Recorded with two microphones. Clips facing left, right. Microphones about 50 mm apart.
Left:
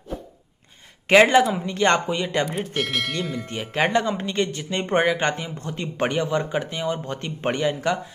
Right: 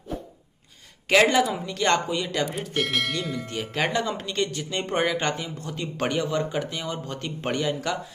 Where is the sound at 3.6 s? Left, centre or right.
Left.